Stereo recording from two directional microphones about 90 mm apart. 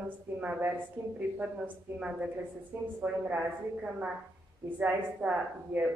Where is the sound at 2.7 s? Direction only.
25° right (ahead or behind).